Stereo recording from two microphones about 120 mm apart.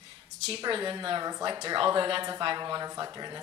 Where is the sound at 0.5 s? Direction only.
40° right (ahead or behind).